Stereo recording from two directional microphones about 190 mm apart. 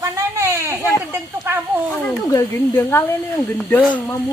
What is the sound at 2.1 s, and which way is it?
Speech, 15° left (ahead or behind).